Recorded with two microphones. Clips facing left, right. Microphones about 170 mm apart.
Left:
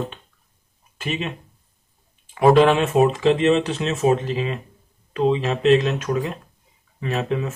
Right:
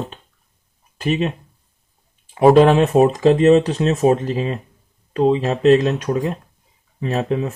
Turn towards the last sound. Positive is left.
turn(degrees=-35)  # may be behind; listen again after turning